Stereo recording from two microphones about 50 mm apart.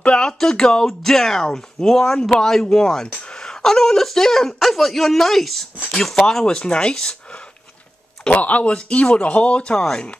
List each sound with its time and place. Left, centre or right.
0.0 s speech: centre
8.4 s speech: left